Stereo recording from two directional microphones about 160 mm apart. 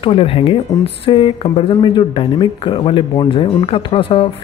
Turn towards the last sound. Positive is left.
turn(degrees=35)  # may be behind; listen again after turning